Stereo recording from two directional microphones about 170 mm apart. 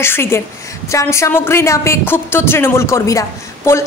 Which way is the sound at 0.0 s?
15° left (ahead or behind).